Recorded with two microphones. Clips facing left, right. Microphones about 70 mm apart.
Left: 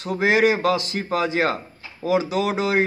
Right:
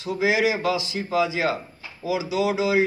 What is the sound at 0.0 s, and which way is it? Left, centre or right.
A man's voice, left.